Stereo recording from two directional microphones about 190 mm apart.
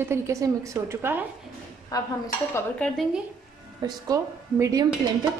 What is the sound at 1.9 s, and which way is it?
Dishes, 20° left (ahead or behind).